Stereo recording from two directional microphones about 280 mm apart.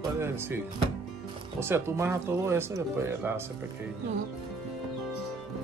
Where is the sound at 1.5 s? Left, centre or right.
Centre.